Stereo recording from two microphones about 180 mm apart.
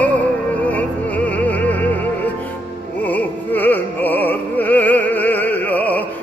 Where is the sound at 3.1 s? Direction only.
10° left (ahead or behind).